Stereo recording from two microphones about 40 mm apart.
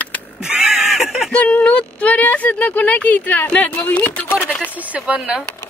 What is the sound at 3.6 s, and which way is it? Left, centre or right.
Speech, left.